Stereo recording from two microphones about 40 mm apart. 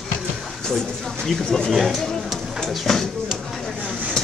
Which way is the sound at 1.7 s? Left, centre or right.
Centre.